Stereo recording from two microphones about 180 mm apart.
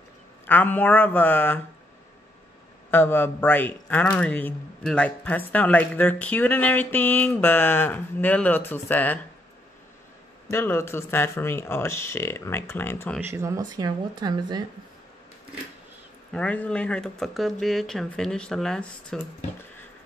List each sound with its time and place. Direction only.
0.5 s speech: 10° left (ahead or behind)
2.9 s speech: 10° left (ahead or behind)
10.5 s speech: 15° left (ahead or behind)
13.2 s speech: 15° right (ahead or behind)
16.3 s speech: 5° left (ahead or behind)